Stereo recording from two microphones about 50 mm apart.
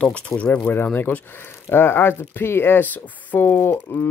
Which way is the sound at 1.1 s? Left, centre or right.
Left.